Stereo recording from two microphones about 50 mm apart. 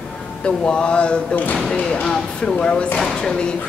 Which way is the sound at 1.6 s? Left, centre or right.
Centre.